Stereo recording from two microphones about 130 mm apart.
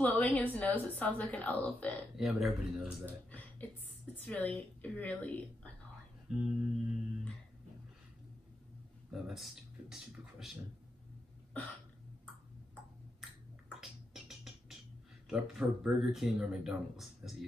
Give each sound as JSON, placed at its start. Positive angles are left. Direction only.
{"t": 0.0, "sound": "a woman's voice", "side_deg": 10}
{"t": 2.1, "sound": "speech", "side_deg": -5}
{"t": 3.3, "sound": "a woman's voice", "side_deg": 10}
{"t": 6.2, "sound": "guitar", "side_deg": -5}
{"t": 9.1, "sound": "speech", "side_deg": 0}
{"t": 13.7, "sound": "music", "side_deg": -5}
{"t": 15.2, "sound": "speech", "side_deg": -5}